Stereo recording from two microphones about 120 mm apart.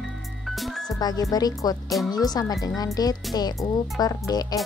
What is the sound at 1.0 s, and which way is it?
Speech, 35° left (ahead or behind).